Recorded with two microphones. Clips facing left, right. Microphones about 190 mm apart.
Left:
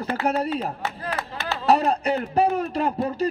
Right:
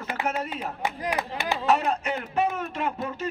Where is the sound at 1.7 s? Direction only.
35° left (ahead or behind).